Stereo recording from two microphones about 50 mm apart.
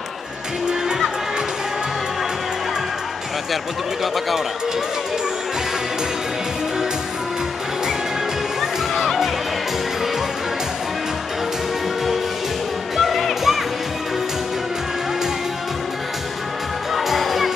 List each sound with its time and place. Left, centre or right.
8.5 s music: centre
12.9 s music: centre
16.9 s music: centre